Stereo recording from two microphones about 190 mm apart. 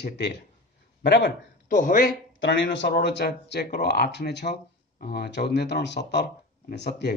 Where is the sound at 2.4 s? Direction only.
70° left (ahead or behind).